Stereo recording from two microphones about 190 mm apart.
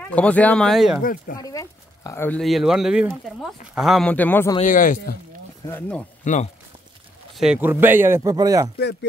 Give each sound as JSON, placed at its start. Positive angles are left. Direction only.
{"t": 0.0, "sound": "speech", "side_deg": 5}
{"t": 1.0, "sound": "speech", "side_deg": 50}
{"t": 1.4, "sound": "speech", "side_deg": 15}
{"t": 4.6, "sound": "speech", "side_deg": 45}
{"t": 5.7, "sound": "speech", "side_deg": 10}
{"t": 6.2, "sound": "speech", "side_deg": 40}
{"t": 7.3, "sound": "speech", "side_deg": -5}